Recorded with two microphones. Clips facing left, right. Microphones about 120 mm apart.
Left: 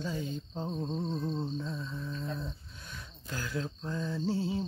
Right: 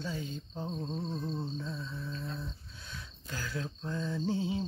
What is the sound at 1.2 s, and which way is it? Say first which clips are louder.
Mantra: left 3 dB; 15° left (ahead or behind).